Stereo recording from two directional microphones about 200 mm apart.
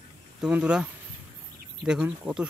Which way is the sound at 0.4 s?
5° right (ahead or behind).